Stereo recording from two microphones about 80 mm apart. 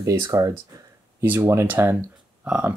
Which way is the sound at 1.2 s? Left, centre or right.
Right.